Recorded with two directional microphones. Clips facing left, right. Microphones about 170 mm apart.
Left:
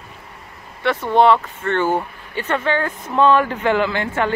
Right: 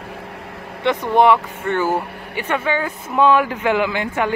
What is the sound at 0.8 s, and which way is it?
Speech, 15° right (ahead or behind).